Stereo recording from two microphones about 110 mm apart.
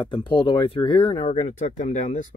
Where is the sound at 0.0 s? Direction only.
50° left (ahead or behind).